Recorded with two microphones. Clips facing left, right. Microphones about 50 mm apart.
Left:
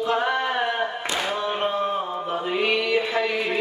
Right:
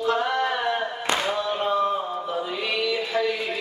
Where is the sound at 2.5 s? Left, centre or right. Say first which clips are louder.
Left 6 dB; left.